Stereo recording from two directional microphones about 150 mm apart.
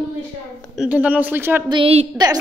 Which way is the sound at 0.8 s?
10° right (ahead or behind).